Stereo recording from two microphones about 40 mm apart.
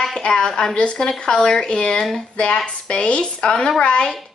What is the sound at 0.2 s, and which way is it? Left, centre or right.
A woman's voice, left.